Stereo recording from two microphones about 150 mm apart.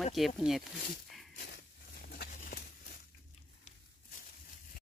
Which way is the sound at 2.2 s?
65° left (ahead or behind).